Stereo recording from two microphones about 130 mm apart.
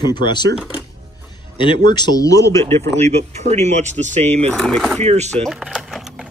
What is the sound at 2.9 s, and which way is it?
Speech, 55° right (ahead or behind).